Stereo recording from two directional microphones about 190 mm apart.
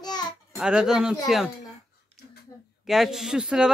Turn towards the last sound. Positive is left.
turn(degrees=-5)  # may be behind; listen again after turning